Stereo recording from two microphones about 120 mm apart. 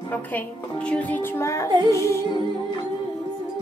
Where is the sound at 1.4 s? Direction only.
25° left (ahead or behind).